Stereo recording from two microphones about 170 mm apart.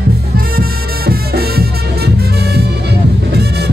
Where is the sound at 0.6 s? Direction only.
65° right (ahead or behind).